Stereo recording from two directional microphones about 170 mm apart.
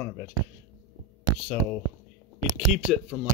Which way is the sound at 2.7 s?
5° right (ahead or behind).